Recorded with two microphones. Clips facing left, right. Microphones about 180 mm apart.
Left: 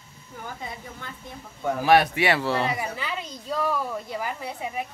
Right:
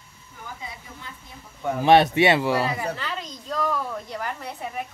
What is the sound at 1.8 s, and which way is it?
Speech, 25° right (ahead or behind).